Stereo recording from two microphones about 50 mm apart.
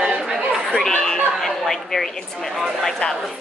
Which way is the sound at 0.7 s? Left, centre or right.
Centre.